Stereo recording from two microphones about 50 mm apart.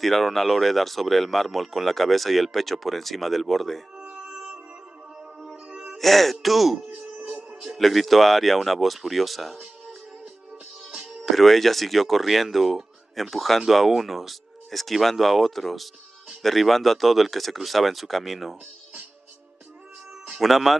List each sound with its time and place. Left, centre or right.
0.0 s speech: centre
4.0 s music: centre
5.9 s speech: centre
10.9 s music: centre
11.2 s speech: centre
20.3 s speech: centre